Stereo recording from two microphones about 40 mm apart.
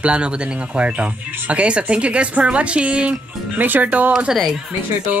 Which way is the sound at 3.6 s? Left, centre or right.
Right.